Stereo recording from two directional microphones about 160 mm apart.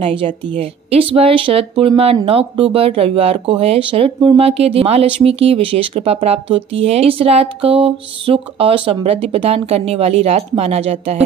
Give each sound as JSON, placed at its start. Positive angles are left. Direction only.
{"t": 0.0, "sound": "speech", "side_deg": -35}